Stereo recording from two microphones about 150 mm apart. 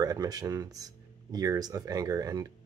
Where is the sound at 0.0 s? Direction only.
25° right (ahead or behind).